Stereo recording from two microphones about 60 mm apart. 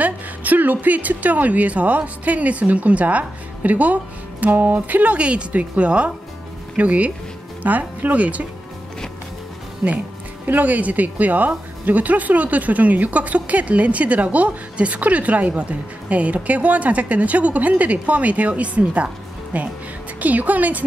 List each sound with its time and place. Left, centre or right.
0.0 s speech: right
10.4 s speech: right